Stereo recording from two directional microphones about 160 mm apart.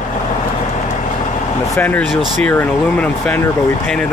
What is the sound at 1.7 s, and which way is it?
Speech, 10° left (ahead or behind).